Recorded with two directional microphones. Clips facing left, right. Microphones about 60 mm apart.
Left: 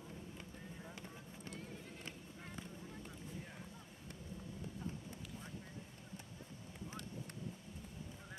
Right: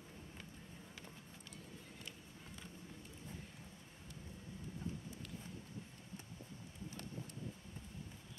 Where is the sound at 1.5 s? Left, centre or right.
Left.